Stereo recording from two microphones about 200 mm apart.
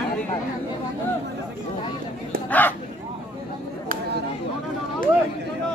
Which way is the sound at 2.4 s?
10° left (ahead or behind).